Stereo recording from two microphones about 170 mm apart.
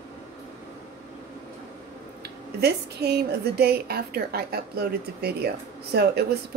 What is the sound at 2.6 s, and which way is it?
A woman's voice, 75° right (ahead or behind).